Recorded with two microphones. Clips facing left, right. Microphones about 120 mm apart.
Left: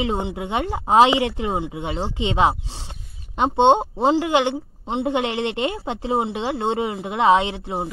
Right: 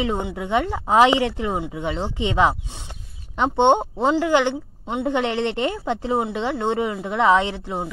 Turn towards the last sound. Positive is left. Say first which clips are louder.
# left 1 dB
turn(degrees=20)  # may be behind; listen again after turning